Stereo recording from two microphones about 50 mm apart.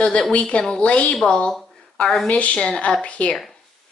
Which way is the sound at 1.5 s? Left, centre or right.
Centre.